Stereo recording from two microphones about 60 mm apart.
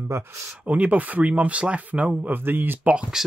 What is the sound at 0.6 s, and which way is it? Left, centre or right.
Speech, right.